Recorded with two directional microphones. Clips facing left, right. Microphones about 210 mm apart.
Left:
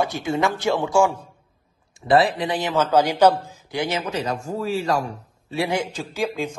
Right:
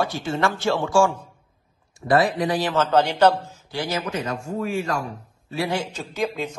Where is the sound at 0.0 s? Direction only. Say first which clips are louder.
Left 1 dB; 20° left (ahead or behind).